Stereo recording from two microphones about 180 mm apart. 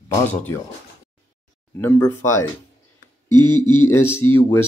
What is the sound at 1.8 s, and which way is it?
Speech, 10° left (ahead or behind).